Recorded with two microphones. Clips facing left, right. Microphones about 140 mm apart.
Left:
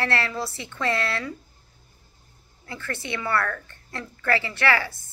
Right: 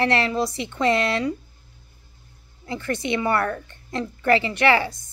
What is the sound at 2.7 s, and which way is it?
A woman's voice, 20° right (ahead or behind).